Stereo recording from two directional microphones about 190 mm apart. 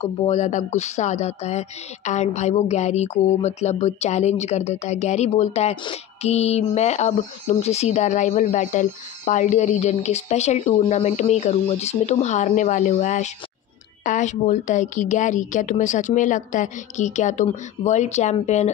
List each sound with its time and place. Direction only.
0.0 s music: 35° left (ahead or behind)